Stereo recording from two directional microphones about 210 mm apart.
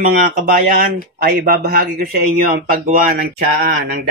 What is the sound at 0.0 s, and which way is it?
A man's voice, 40° right (ahead or behind).